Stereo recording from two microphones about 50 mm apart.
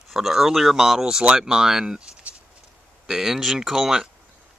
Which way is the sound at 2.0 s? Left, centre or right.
Right.